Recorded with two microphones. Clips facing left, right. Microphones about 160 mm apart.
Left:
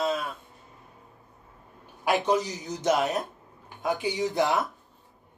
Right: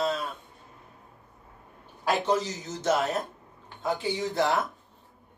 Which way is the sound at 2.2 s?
15° left (ahead or behind).